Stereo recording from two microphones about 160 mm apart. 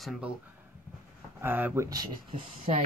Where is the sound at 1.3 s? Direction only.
10° right (ahead or behind).